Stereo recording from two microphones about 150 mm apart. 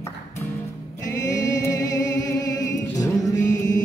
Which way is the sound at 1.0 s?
25° left (ahead or behind).